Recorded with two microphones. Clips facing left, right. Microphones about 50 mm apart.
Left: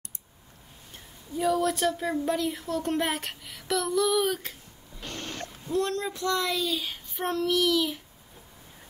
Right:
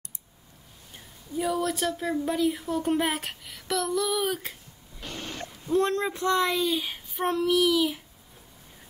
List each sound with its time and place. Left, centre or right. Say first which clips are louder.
0.9 s speech: right 1 dB; centre
5.0 s a sound: even; centre
5.7 s speech: right 4 dB; right
7.2 s child singing: right 2 dB; centre